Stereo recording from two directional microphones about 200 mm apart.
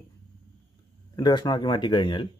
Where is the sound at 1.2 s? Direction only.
20° left (ahead or behind).